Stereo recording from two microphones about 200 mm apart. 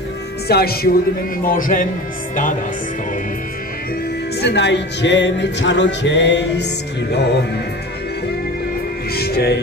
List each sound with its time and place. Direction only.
0.5 s speech: 50° left (ahead or behind)
4.4 s speech: 60° left (ahead or behind)
9.1 s music: 50° left (ahead or behind)